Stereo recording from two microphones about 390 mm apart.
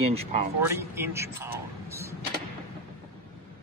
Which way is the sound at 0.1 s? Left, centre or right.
Centre.